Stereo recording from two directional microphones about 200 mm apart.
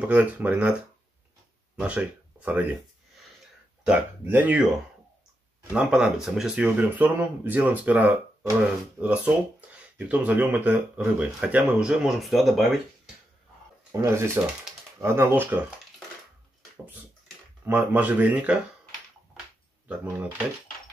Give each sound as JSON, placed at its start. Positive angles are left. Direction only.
{"t": 0.0, "sound": "speech", "side_deg": -5}
{"t": 1.8, "sound": "speech", "side_deg": -5}
{"t": 3.8, "sound": "speech", "side_deg": -10}
{"t": 5.7, "sound": "speech", "side_deg": -5}
{"t": 13.9, "sound": "speech", "side_deg": -15}
{"t": 17.6, "sound": "speech", "side_deg": -10}
{"t": 19.9, "sound": "speech", "side_deg": -5}